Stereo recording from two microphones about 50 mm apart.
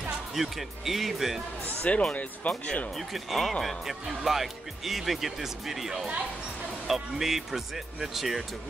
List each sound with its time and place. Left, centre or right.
0.3 s speech: centre
1.8 s speech: left
3.0 s speech: centre